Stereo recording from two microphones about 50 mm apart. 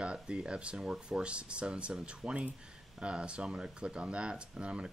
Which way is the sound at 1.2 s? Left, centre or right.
Right.